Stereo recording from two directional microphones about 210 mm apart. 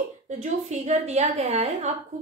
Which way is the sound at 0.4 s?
35° right (ahead or behind).